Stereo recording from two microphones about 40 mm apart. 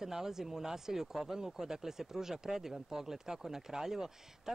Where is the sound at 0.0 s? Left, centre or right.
Centre.